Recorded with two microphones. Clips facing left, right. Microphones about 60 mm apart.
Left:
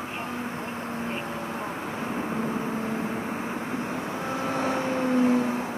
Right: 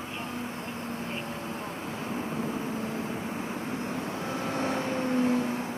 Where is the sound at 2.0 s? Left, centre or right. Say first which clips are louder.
Left 3 dB; left.